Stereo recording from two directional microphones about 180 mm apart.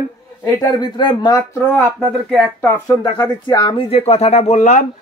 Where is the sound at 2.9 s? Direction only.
20° left (ahead or behind).